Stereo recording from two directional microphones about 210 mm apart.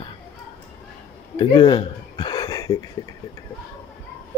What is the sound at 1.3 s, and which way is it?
Speech, 20° left (ahead or behind).